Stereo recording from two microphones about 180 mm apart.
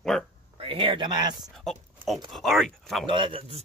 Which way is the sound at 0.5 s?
30° right (ahead or behind).